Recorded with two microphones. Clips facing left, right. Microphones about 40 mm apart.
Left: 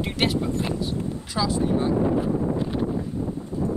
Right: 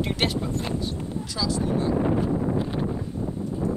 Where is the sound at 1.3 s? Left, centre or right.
Left.